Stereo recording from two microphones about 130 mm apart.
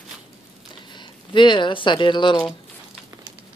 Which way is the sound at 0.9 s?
35° left (ahead or behind).